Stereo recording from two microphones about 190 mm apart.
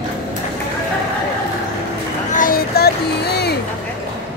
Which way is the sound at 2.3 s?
45° left (ahead or behind).